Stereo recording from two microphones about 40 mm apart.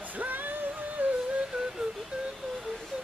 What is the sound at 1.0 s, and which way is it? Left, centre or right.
Music, right.